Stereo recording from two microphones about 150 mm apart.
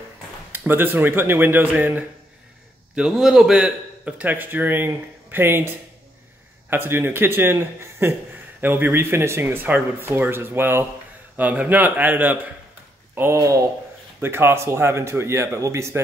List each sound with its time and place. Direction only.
0.5 s speech: 15° right (ahead or behind)